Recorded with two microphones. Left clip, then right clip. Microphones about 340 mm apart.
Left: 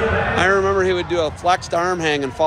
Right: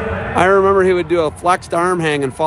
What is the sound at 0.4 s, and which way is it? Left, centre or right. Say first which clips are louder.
A man's voice: right 7 dB; centre.